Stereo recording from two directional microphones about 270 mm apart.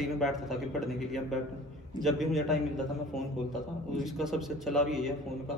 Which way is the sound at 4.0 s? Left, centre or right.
Centre.